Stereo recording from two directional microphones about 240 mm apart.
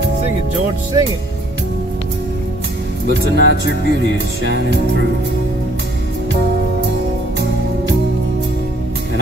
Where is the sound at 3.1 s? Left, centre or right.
Right.